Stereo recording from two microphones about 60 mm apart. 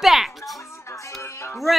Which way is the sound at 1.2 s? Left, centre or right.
Left.